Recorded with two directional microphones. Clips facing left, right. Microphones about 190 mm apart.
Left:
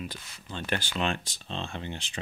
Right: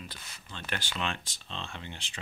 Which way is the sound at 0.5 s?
40° left (ahead or behind).